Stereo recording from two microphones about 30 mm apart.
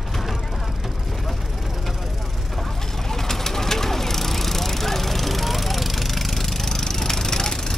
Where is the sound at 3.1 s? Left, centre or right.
Centre.